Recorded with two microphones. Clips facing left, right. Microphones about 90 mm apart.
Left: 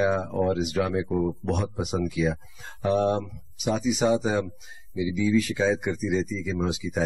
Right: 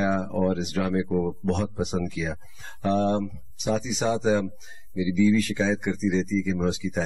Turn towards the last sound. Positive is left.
turn(degrees=5)  # may be behind; listen again after turning